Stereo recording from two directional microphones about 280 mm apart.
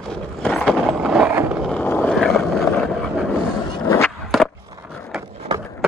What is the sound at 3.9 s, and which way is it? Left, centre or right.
Skateboard, centre.